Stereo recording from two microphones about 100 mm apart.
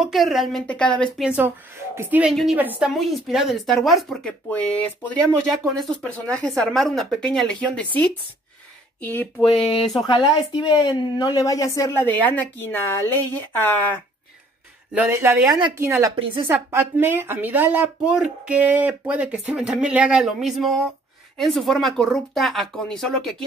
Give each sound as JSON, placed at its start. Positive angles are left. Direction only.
{"t": 0.0, "sound": "speech", "side_deg": 0}
{"t": 0.7, "sound": "speech", "side_deg": 10}
{"t": 1.2, "sound": "speech", "side_deg": -15}
{"t": 2.9, "sound": "speech", "side_deg": 0}
{"t": 9.6, "sound": "speech", "side_deg": 0}
{"t": 10.0, "sound": "a woman's voice", "side_deg": 50}
{"t": 15.0, "sound": "speech", "side_deg": -25}
{"t": 15.4, "sound": "speech", "side_deg": -45}
{"t": 15.8, "sound": "speech", "side_deg": -30}